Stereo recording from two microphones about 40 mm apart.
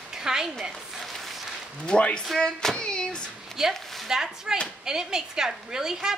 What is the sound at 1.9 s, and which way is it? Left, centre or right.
Speech, left.